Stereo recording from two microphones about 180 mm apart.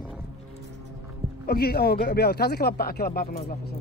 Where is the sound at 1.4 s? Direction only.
60° left (ahead or behind).